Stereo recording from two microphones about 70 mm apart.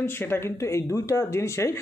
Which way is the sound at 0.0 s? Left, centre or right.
Left.